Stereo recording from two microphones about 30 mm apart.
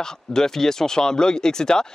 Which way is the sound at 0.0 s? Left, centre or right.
Centre.